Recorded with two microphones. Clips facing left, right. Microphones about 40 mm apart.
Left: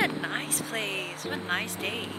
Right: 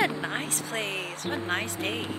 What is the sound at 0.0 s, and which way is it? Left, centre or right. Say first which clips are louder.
Speech: right 1 dB; centre.